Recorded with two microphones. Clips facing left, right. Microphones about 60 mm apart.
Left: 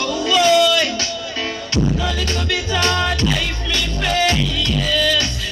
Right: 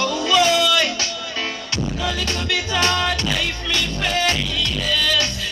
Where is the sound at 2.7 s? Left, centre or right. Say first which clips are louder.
Left 1 dB; centre.